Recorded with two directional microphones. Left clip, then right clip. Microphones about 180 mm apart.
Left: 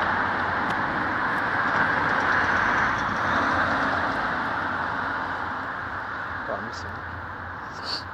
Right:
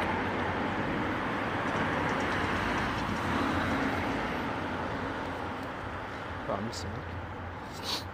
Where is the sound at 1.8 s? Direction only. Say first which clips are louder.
Left 8 dB; 15° right (ahead or behind).